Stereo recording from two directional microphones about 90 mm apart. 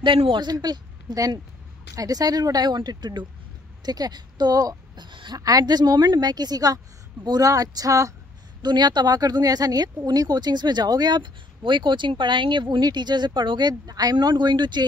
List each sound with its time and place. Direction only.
0.0 s a woman's voice: 65° right (ahead or behind)
0.5 s a woman's voice: 50° right (ahead or behind)
5.0 s a woman's voice: 60° right (ahead or behind)
5.4 s speech: 45° right (ahead or behind)
8.6 s speech: 55° right (ahead or behind)